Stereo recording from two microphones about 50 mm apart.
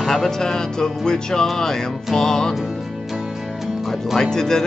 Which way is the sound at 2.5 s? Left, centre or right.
Centre.